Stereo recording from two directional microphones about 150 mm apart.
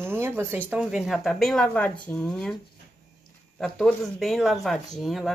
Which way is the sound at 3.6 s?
Centre (ahead or behind).